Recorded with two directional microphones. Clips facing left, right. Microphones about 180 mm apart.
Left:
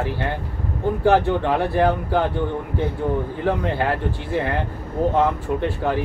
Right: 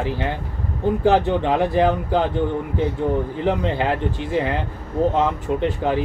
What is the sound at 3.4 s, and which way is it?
Speech, 20° right (ahead or behind).